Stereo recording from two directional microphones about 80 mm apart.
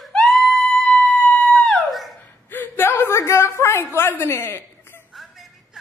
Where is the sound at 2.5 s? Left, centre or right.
Left.